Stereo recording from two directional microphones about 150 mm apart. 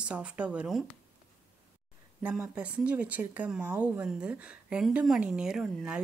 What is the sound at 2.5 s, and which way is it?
A woman's voice, 5° right (ahead or behind).